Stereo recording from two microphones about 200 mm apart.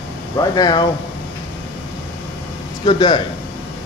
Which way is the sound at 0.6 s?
20° left (ahead or behind).